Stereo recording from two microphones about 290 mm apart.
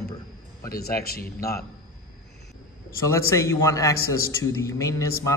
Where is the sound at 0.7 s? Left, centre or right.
Left.